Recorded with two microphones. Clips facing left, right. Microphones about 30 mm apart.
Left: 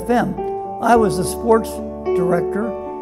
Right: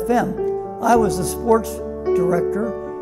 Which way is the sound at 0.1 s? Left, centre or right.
Left.